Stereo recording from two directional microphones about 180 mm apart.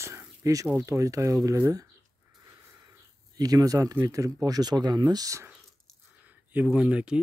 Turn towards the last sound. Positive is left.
turn(degrees=-5)  # may be behind; listen again after turning